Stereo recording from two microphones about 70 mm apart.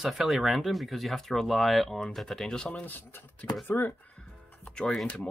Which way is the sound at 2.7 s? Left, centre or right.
Left.